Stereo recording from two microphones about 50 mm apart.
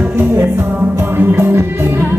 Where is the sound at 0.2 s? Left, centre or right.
Right.